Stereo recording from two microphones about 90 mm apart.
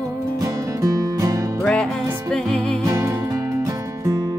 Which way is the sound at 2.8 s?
40° right (ahead or behind).